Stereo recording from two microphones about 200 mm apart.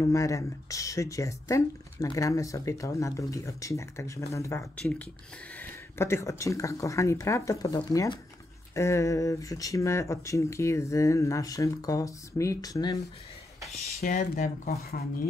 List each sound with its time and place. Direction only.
0.0 s speech: 15° left (ahead or behind)
14.0 s speech: 40° left (ahead or behind)